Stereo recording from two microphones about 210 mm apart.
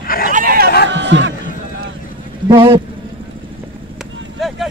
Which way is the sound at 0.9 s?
60° right (ahead or behind).